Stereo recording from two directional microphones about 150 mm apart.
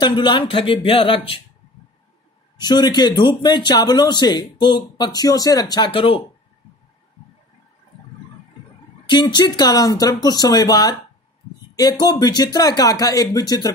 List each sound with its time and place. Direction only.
0.0 s speech: 30° left (ahead or behind)
2.5 s speech: 30° left (ahead or behind)
5.9 s speech: 40° left (ahead or behind)
9.0 s speech: 30° left (ahead or behind)